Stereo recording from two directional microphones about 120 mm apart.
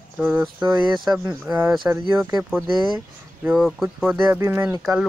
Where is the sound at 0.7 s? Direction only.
40° right (ahead or behind).